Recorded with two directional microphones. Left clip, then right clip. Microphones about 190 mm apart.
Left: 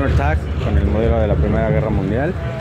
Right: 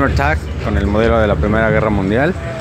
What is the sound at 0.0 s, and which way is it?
Speech, 15° right (ahead or behind).